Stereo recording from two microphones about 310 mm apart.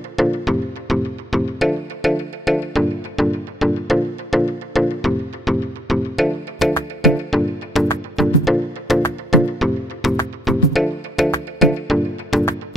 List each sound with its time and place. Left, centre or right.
0.1 s music: centre